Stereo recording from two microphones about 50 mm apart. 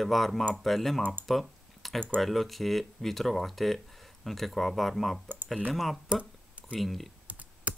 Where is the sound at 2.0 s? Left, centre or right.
Centre.